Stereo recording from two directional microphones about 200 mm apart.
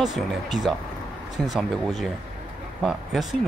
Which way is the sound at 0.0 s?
Centre (ahead or behind).